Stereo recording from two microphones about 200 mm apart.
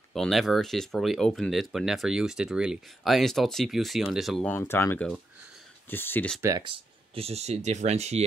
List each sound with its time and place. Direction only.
0.1 s speech: centre (ahead or behind)
4.5 s speech: 10° left (ahead or behind)
7.2 s speech: 30° right (ahead or behind)